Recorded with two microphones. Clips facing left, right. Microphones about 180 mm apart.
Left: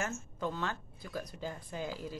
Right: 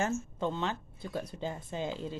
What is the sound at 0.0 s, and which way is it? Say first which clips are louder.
Speech: right 5 dB; 25° right (ahead or behind).